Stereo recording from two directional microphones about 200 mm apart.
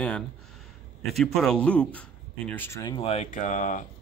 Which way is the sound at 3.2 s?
40° left (ahead or behind).